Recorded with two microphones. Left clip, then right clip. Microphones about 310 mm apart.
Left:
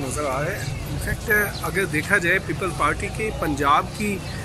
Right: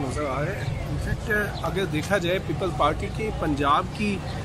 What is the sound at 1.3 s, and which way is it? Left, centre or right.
Speech, centre.